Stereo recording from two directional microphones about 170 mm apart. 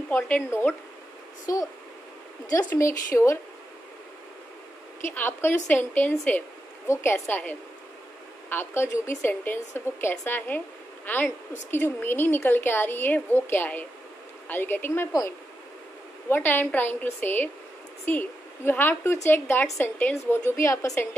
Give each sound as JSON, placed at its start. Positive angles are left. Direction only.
{"t": 0.1, "sound": "a woman's voice", "side_deg": 15}
{"t": 5.0, "sound": "a woman's voice", "side_deg": 15}